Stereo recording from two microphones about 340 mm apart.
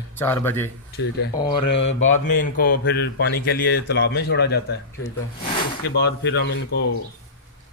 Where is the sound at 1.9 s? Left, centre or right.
Left.